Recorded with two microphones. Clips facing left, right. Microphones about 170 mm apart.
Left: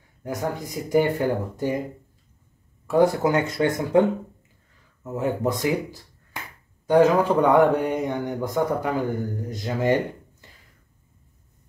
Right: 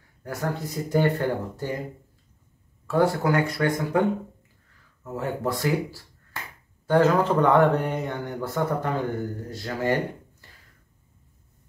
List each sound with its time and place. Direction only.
0.2 s speech: 15° left (ahead or behind)
2.9 s speech: 15° left (ahead or behind)
5.1 s speech: 20° left (ahead or behind)
6.4 s finger snapping: 15° left (ahead or behind)
6.9 s speech: 15° left (ahead or behind)
10.4 s a sound: 20° left (ahead or behind)